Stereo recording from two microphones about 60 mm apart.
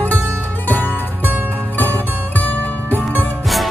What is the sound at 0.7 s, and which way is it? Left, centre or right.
Music, left.